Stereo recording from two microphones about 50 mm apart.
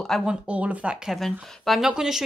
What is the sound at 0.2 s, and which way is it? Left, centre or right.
Speech, right.